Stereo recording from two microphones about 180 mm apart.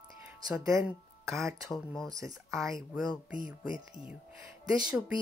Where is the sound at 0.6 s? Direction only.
15° right (ahead or behind).